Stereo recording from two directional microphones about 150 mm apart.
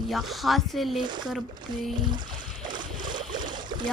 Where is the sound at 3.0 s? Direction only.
30° right (ahead or behind).